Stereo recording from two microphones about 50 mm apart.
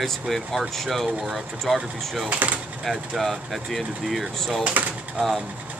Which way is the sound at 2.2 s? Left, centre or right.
Right.